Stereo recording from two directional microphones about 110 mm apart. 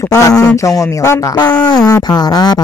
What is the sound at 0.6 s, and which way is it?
Speech, 30° left (ahead or behind).